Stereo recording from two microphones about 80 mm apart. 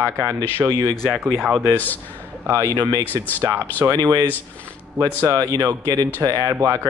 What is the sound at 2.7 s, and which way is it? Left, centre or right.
Speech, right.